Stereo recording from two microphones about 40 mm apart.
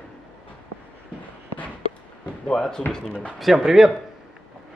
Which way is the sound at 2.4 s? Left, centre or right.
Centre.